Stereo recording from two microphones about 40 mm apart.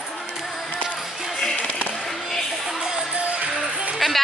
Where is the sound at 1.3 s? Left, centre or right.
Centre.